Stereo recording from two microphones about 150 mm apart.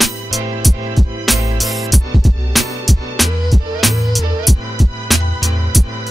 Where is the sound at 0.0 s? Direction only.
Centre (ahead or behind).